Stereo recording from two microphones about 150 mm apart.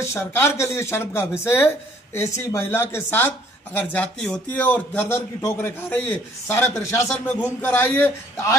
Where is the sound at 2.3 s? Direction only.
15° left (ahead or behind).